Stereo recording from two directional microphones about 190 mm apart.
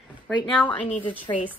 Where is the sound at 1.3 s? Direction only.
20° left (ahead or behind).